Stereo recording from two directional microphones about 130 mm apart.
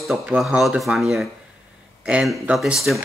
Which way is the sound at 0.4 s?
Centre (ahead or behind).